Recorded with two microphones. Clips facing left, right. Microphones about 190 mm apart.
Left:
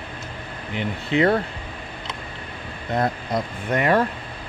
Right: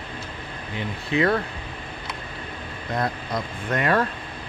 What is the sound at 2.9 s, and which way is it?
Speech, 25° left (ahead or behind).